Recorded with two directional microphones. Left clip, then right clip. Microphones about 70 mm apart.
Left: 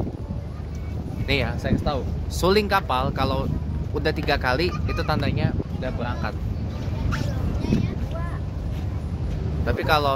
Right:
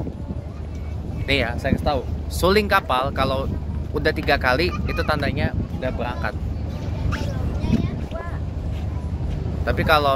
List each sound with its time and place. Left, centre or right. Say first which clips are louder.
1.2 s speech: right 3 dB; left
1.5 s speech: right 4 dB; centre
2.4 s speech: right 2 dB; left
3.9 s speech: right 3 dB; left
9.7 s speech: right 3 dB; left